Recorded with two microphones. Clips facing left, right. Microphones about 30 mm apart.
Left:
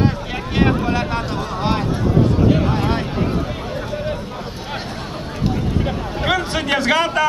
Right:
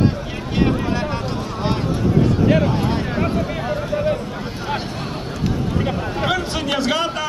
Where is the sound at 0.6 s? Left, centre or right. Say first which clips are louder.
Left 2 dB; left.